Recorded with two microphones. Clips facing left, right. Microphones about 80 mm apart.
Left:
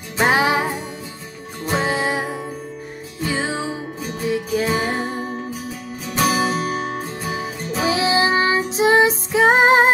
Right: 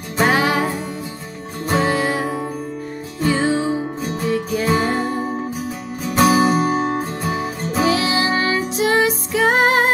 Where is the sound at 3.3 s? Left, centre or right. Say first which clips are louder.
Right 6 dB; centre.